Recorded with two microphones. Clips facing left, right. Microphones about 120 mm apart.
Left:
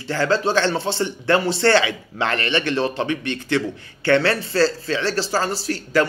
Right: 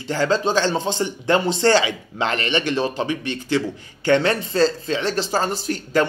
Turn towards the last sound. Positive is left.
turn(degrees=-20)  # may be behind; listen again after turning